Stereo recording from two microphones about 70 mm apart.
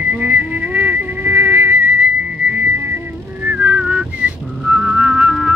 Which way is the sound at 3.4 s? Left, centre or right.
Right.